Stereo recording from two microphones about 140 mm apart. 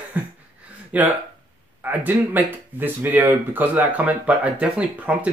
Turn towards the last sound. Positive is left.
turn(degrees=-10)  # may be behind; listen again after turning